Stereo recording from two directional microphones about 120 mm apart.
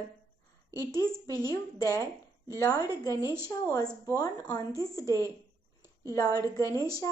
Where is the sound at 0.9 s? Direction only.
30° left (ahead or behind).